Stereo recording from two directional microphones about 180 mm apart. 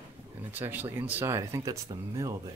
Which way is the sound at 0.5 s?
10° right (ahead or behind).